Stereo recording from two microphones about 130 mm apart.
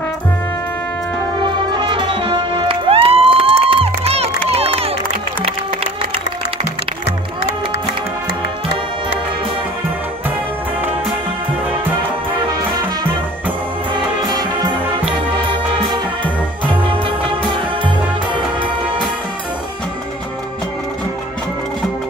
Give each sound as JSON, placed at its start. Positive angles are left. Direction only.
{"t": 1.7, "sound": "music", "side_deg": -40}
{"t": 13.9, "sound": "music", "side_deg": -35}
{"t": 17.8, "sound": "music", "side_deg": -40}